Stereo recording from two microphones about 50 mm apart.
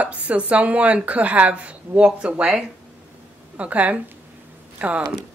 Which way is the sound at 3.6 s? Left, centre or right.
Right.